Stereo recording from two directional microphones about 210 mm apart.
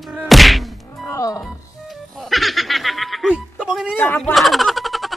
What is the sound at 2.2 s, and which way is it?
Speech, centre (ahead or behind).